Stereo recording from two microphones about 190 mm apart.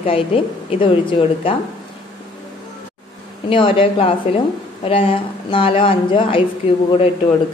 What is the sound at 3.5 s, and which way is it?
A woman's voice, 25° left (ahead or behind).